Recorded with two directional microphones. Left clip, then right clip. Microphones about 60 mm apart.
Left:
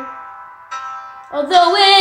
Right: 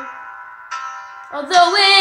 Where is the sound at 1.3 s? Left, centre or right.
Left.